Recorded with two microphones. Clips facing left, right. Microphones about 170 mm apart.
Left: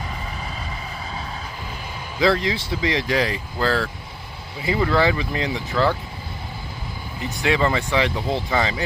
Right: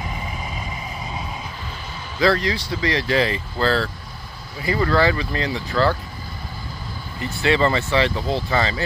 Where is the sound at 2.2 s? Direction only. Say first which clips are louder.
Even; 20° left (ahead or behind).